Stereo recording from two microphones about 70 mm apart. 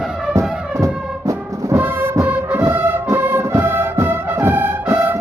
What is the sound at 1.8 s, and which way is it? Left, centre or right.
Music, right.